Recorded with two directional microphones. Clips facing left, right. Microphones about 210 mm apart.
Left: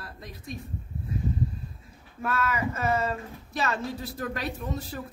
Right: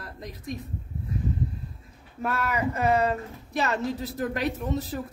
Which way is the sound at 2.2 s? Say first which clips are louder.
Right 1 dB; 15° right (ahead or behind).